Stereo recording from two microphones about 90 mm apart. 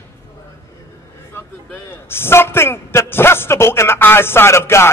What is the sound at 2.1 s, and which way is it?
A man's voice, 25° left (ahead or behind).